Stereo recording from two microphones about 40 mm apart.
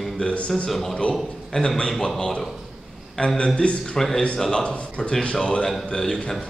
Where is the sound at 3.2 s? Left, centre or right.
Left.